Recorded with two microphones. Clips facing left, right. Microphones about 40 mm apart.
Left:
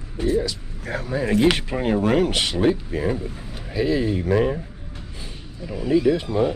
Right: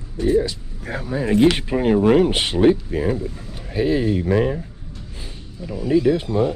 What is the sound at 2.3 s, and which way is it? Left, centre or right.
Speech, right.